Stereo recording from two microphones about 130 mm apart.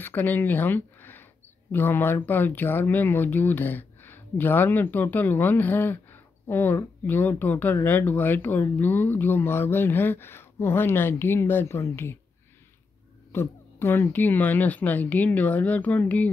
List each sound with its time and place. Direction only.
0.0 s speech: 15° left (ahead or behind)
13.3 s speech: 20° left (ahead or behind)